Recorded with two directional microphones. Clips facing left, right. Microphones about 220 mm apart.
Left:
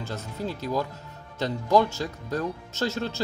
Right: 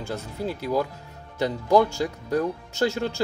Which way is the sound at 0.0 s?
10° right (ahead or behind).